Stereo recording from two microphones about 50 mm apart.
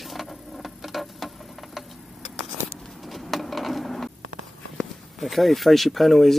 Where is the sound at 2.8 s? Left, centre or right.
Centre.